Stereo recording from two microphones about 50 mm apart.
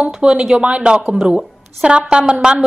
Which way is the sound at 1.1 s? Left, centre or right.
Centre.